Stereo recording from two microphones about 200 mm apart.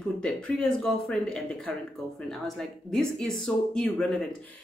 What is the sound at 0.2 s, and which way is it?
Speech, 5° left (ahead or behind).